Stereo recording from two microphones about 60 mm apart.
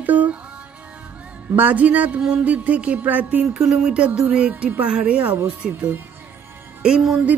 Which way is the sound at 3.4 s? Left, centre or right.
Centre.